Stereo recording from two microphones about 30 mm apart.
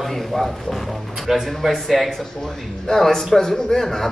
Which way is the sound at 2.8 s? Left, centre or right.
Centre.